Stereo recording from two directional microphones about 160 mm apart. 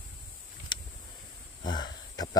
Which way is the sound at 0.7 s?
30° left (ahead or behind).